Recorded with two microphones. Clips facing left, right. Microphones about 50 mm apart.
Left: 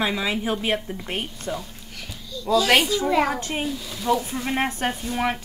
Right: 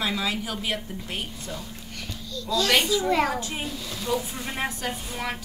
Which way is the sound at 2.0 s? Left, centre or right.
Centre.